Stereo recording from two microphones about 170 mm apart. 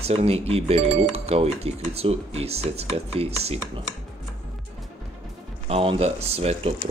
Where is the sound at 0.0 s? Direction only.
35° right (ahead or behind).